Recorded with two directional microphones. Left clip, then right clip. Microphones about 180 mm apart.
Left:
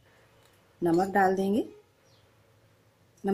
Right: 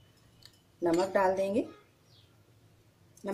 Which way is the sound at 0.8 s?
45° left (ahead or behind).